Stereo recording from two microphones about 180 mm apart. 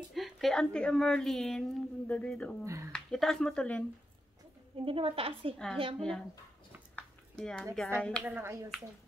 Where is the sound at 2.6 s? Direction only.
15° right (ahead or behind).